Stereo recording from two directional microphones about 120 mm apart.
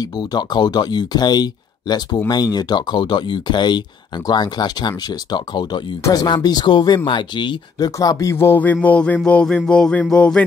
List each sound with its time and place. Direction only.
0.0 s a man's voice: 35° left (ahead or behind); by 10.4 s 10° left (ahead or behind)